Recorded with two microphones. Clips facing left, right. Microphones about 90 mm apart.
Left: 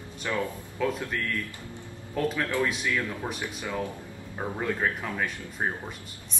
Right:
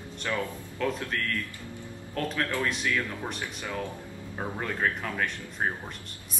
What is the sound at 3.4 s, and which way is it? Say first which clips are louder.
Speech: left 4 dB; 15° left (ahead or behind).